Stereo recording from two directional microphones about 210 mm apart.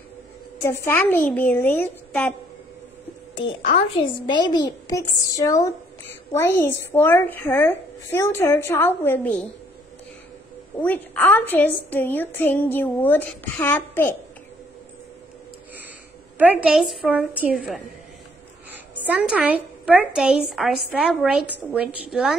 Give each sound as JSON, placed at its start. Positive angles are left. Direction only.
{"t": 0.6, "sound": "a child's voice", "side_deg": 15}
{"t": 3.3, "sound": "a child's voice", "side_deg": 25}
{"t": 10.8, "sound": "a child's voice", "side_deg": 10}
{"t": 16.3, "sound": "a woman's voice", "side_deg": -5}
{"t": 19.0, "sound": "a woman's voice", "side_deg": -5}